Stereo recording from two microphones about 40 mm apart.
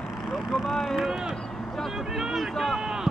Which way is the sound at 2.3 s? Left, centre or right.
Centre.